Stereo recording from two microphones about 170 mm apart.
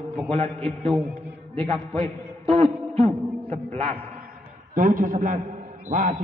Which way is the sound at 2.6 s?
30° right (ahead or behind).